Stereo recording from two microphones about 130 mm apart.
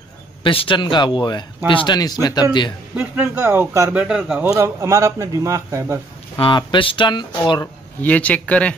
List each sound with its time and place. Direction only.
0.4 s speech: 40° left (ahead or behind)
2.0 s speech: 30° left (ahead or behind)
3.0 s speech: 15° right (ahead or behind)
3.9 s speech: 10° right (ahead or behind)
4.5 s a man's voice: 20° right (ahead or behind)
6.3 s speech: 40° left (ahead or behind)
8.0 s a man's voice: 10° left (ahead or behind)